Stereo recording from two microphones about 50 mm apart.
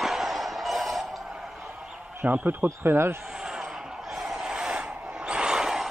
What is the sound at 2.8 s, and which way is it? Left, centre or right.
Speech, right.